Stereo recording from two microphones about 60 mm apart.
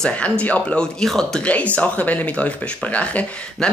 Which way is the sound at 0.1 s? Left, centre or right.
Left.